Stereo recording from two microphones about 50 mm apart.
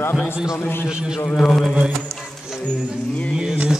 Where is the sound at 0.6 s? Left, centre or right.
Left.